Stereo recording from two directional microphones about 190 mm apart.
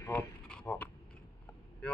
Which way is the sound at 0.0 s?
10° left (ahead or behind).